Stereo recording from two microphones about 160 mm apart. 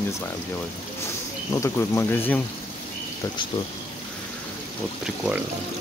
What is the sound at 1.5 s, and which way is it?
Speech, 15° left (ahead or behind).